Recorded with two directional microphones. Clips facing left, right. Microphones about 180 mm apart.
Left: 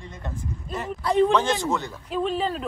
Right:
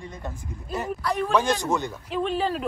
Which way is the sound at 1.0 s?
25° left (ahead or behind).